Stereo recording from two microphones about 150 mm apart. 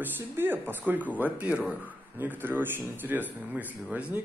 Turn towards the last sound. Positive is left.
turn(degrees=-10)  # may be behind; listen again after turning